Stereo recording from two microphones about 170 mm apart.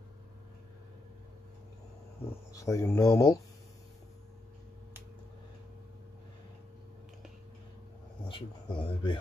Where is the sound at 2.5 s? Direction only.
20° left (ahead or behind).